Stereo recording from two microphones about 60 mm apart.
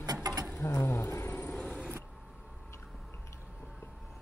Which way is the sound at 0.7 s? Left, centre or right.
Left.